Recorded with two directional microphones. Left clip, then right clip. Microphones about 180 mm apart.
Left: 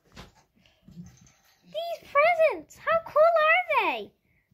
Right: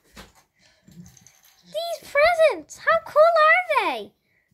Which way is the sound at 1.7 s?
15° right (ahead or behind).